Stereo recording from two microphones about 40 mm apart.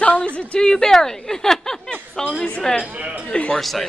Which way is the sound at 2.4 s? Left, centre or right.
Centre.